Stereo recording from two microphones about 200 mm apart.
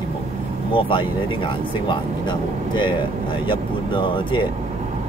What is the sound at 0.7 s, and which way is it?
Speech, 25° left (ahead or behind).